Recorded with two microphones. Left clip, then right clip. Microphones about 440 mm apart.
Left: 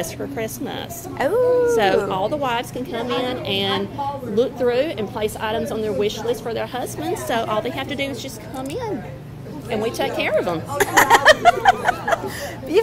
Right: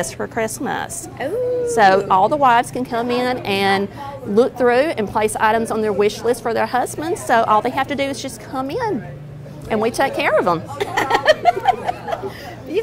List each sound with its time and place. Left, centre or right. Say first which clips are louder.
0.0 s a woman's voice: right 4 dB; right
1.2 s a woman's voice: left 4 dB; left
1.7 s a woman's voice: right 5 dB; right
10.8 s snicker: left 4 dB; left